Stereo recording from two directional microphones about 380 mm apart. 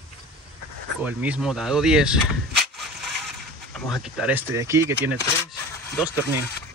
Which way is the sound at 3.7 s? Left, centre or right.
Centre.